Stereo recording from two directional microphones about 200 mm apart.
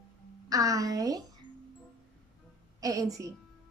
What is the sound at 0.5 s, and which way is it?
Speech, 15° right (ahead or behind).